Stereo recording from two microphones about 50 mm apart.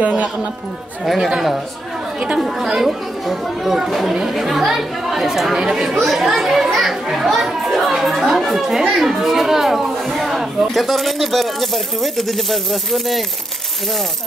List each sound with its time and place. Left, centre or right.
0.0 s speech: right
1.0 s speech: centre
2.4 s speech: centre